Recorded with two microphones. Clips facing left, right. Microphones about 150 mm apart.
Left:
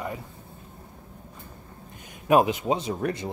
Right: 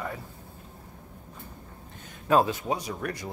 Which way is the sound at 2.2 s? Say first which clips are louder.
Left 3 dB; 15° left (ahead or behind).